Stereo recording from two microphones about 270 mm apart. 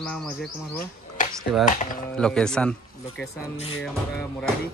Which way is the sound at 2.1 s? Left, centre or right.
Centre.